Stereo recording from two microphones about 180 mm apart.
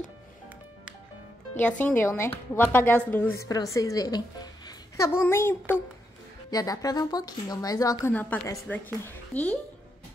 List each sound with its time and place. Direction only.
1.5 s a woman's voice: 5° left (ahead or behind)
8.1 s a woman's voice: 10° left (ahead or behind)